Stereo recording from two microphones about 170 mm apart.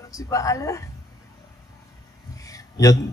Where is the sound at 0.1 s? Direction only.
20° left (ahead or behind).